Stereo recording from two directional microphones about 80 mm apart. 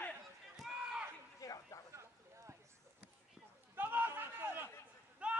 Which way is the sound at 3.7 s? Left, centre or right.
Right.